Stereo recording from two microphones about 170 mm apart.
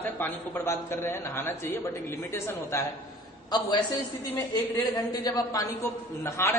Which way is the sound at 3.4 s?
25° left (ahead or behind).